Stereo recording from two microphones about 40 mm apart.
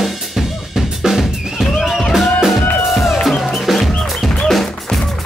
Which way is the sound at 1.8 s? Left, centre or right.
Centre.